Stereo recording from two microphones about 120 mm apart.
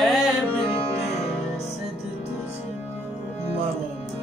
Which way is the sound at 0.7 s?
50° left (ahead or behind).